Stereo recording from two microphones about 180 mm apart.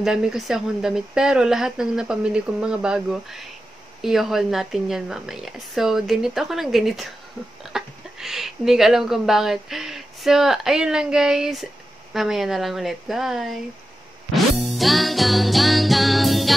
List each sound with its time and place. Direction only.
0.0 s speech: 5° right (ahead or behind)
14.3 s music: centre (ahead or behind)